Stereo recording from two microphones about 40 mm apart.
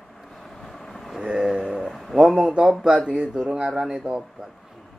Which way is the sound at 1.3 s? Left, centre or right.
Centre.